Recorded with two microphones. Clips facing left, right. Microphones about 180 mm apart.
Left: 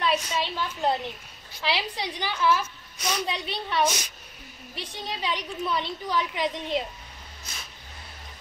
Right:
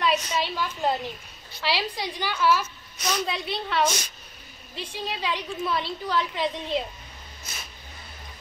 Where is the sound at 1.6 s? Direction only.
20° left (ahead or behind).